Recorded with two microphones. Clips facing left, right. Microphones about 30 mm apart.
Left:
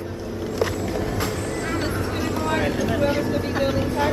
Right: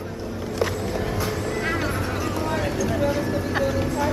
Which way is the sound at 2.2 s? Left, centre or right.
Centre.